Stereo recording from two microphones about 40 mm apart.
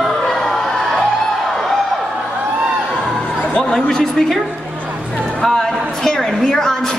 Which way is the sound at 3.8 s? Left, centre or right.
Centre.